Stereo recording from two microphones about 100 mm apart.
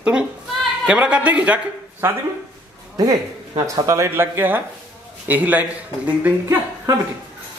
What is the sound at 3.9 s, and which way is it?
Speech, 25° right (ahead or behind).